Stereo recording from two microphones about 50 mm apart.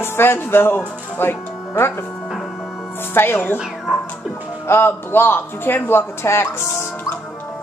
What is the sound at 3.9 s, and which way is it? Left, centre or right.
Music, centre.